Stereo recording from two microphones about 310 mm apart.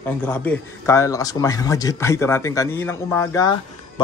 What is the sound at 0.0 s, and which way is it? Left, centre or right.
Speech, centre.